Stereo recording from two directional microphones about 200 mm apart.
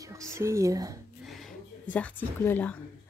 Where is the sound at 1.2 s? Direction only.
Centre (ahead or behind).